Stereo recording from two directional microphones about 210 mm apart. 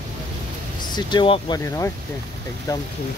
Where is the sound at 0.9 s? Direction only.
25° left (ahead or behind).